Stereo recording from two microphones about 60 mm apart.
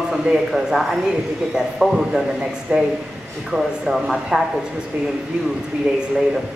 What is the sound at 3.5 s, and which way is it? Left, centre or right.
Speech, centre.